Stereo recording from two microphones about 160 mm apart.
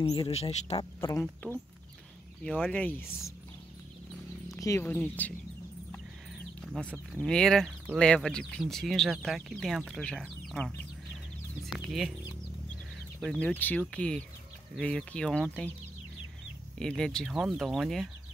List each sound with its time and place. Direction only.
0.0 s speech: 25° left (ahead or behind)
0.3 s speech: 40° left (ahead or behind)
2.4 s speech: 10° left (ahead or behind)
4.5 s speech: 20° left (ahead or behind)
6.6 s speech: 5° left (ahead or behind)
13.2 s speech: 5° left (ahead or behind)
16.7 s speech: 5° left (ahead or behind)